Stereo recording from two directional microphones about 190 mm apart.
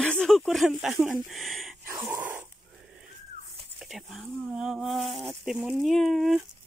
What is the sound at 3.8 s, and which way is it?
Speech, centre (ahead or behind).